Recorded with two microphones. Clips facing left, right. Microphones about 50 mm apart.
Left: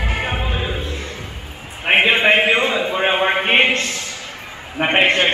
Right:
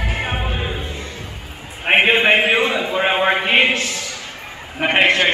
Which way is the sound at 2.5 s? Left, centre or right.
Left.